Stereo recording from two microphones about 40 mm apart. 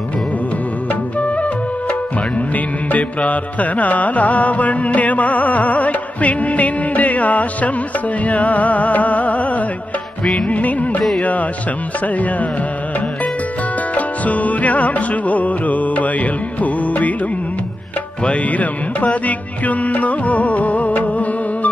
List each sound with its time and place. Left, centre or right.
1.2 s music: left
2.5 s carnatic music: left
10.5 s music: left
11.1 s carnatic music: left
13.9 s music: left
18.2 s carnatic music: left